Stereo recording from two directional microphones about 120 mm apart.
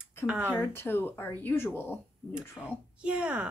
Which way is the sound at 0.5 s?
20° left (ahead or behind).